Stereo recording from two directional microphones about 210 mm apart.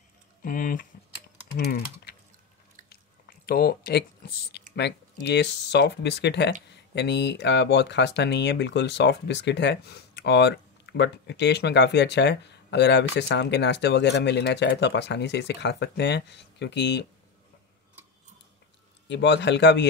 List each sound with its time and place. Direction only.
0.4 s speech: 40° left (ahead or behind)
2.9 s a sound: 45° left (ahead or behind)
4.7 s speech: 55° left (ahead or behind)
19.0 s speech: 55° left (ahead or behind)